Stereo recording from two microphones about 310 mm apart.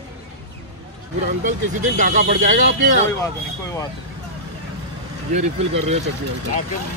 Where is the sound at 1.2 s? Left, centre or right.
Right.